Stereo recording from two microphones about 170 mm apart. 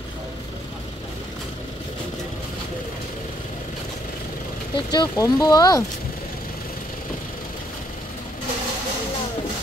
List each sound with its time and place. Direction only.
4.7 s speech: 25° left (ahead or behind)